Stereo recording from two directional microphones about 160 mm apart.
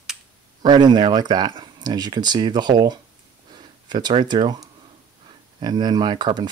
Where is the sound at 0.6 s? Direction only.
25° right (ahead or behind).